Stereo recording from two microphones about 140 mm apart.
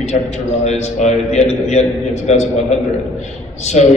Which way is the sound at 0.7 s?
55° left (ahead or behind).